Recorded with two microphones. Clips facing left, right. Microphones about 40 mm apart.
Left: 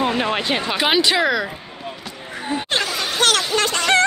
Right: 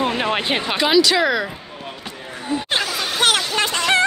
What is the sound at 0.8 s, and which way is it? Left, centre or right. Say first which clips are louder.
Speech: right 2 dB; left.